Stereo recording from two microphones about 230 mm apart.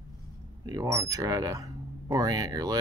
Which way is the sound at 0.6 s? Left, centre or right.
Centre.